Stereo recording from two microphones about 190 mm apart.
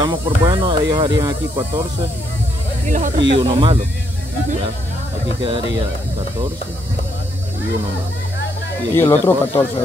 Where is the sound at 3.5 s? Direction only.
30° right (ahead or behind).